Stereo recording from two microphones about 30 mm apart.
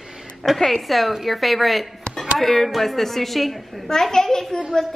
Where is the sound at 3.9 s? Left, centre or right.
Centre.